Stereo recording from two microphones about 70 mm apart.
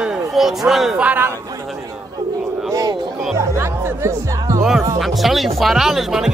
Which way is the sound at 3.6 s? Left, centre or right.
Right.